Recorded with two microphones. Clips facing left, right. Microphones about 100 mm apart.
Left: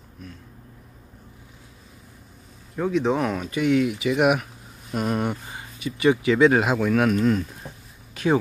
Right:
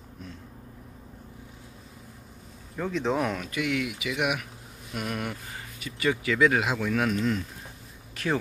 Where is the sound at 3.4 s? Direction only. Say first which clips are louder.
Left 8 dB; 30° left (ahead or behind).